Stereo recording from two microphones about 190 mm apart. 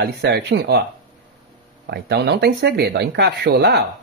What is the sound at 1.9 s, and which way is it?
Speech, 60° right (ahead or behind).